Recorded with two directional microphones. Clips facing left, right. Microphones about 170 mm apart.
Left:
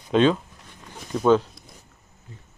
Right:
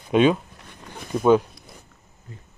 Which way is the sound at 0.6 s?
60° right (ahead or behind).